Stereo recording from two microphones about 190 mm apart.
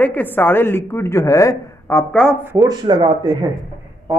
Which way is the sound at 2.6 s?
20° right (ahead or behind).